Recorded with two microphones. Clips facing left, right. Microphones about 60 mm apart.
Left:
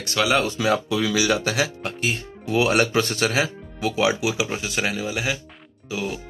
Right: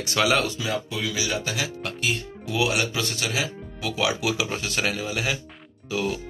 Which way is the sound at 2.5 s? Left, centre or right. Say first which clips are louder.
Left 5 dB; left.